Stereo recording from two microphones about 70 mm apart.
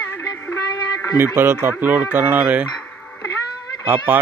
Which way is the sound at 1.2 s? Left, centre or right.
Right.